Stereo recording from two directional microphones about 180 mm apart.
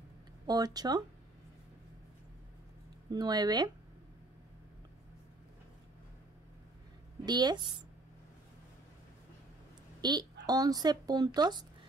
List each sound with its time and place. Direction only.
0.5 s speech: 20° right (ahead or behind)
3.1 s speech: 20° right (ahead or behind)
7.2 s speech: 25° right (ahead or behind)
10.0 s speech: 20° right (ahead or behind)